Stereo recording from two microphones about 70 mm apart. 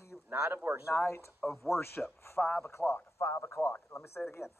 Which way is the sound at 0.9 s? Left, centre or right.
Left.